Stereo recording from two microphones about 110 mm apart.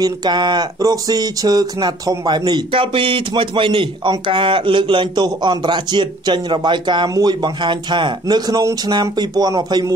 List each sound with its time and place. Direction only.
0.0 s speech: 40° right (ahead or behind)